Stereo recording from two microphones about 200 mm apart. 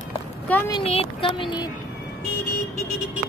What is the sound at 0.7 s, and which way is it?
Speech, 30° left (ahead or behind).